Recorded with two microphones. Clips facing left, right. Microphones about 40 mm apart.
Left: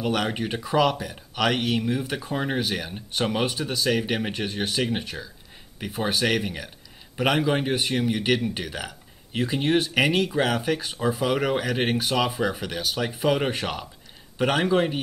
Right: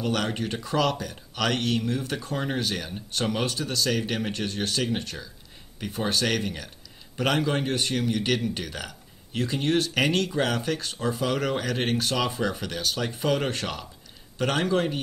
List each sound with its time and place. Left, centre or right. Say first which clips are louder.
0.0 s a man's voice: left 2 dB; centre